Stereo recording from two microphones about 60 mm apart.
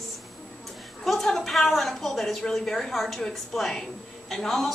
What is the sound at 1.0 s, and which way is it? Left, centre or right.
A woman's voice, centre.